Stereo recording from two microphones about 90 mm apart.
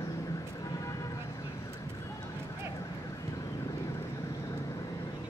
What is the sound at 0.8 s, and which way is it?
Vehicle, 45° left (ahead or behind).